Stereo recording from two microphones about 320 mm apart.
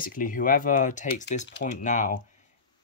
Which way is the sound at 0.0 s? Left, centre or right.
Left.